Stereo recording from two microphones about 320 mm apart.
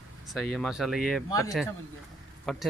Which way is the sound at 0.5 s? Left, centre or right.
Centre.